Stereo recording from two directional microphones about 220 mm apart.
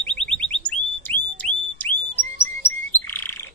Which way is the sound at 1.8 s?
10° left (ahead or behind).